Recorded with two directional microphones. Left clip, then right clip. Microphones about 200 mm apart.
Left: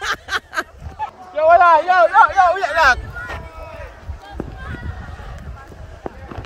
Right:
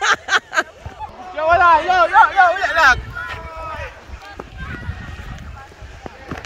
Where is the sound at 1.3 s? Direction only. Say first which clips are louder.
Left 2 dB; 35° left (ahead or behind).